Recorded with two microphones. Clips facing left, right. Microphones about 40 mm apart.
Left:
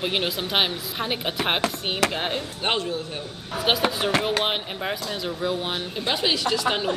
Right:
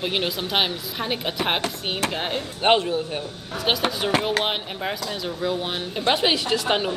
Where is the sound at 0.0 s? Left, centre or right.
Centre.